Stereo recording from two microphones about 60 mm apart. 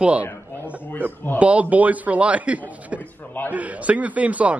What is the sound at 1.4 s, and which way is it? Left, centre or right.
A man's voice, right.